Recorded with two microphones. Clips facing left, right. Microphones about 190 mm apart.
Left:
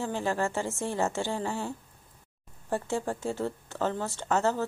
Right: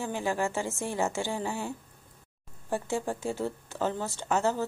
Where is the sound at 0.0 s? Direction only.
15° right (ahead or behind).